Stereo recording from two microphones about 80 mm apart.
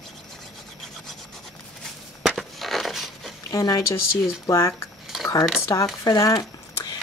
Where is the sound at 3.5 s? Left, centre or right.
Left.